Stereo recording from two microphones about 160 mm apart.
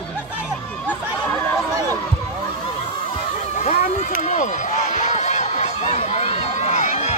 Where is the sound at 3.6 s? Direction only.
50° left (ahead or behind).